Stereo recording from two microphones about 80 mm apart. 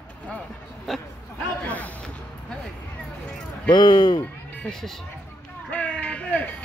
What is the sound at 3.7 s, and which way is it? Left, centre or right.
Speech, left.